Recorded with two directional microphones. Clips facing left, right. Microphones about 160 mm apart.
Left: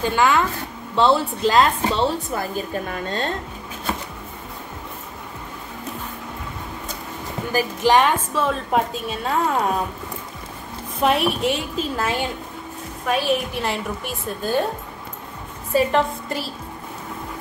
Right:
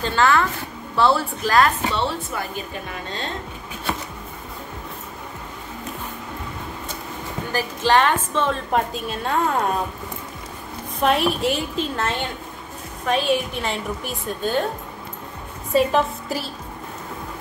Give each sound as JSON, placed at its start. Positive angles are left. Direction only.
{"t": 0.0, "sound": "a woman's voice", "side_deg": 15}
{"t": 1.8, "sound": "speech", "side_deg": 35}
{"t": 7.5, "sound": "a woman's voice", "side_deg": 15}
{"t": 11.0, "sound": "a woman's voice", "side_deg": 0}
{"t": 15.7, "sound": "a woman's voice", "side_deg": 0}